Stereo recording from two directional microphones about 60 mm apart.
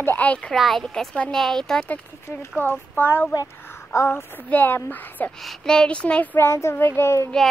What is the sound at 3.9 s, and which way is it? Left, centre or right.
Speech, left.